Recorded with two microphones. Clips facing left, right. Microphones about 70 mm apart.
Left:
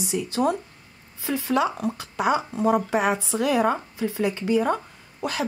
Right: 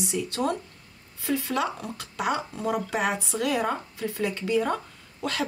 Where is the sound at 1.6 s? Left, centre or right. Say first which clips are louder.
Left 6 dB; centre.